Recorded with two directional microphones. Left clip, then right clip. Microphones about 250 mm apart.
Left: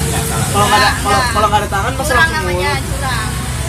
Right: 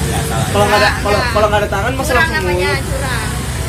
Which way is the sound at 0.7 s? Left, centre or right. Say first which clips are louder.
Left 2 dB; centre.